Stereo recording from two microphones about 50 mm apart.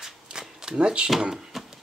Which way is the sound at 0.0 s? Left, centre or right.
Centre.